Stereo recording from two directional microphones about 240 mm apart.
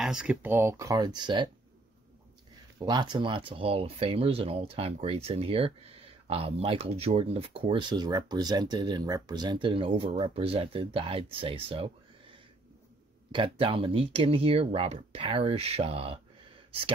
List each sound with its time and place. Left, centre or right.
0.0 s speech: centre
2.8 s speech: centre